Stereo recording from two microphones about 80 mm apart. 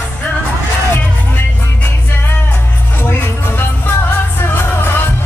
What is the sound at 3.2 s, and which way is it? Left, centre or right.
Music, left.